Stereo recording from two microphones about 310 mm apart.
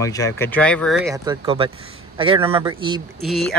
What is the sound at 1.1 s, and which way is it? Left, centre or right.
Speech, centre.